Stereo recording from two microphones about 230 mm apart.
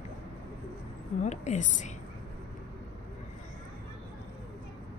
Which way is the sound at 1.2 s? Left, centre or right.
Left.